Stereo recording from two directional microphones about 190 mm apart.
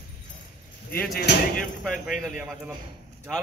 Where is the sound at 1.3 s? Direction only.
65° left (ahead or behind).